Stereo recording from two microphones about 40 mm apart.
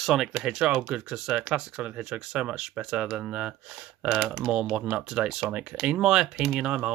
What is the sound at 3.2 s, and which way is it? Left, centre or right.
Speech, right.